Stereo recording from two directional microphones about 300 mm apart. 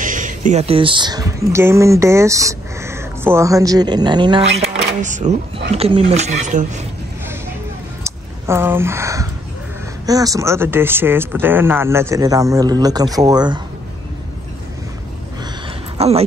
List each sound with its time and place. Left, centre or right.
0.0 s speech: right
8.0 s a sound: centre
10.0 s speech: centre
16.0 s speech: centre